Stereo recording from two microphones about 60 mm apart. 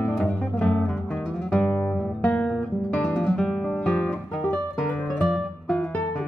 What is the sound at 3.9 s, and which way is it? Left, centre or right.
Music, centre.